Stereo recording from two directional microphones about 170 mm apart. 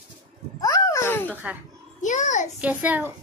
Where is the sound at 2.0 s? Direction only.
45° left (ahead or behind).